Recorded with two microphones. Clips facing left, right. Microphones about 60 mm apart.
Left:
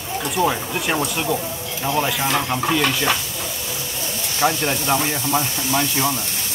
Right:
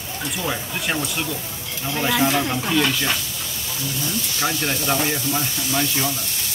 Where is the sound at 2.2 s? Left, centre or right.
Left.